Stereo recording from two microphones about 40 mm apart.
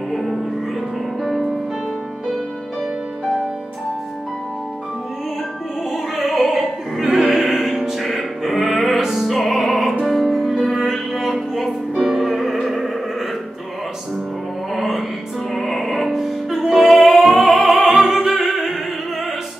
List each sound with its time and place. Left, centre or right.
0.1 s music: centre
6.1 s opera: centre
7.3 s music: centre
9.3 s music: centre
14.8 s music: centre
17.3 s opera: centre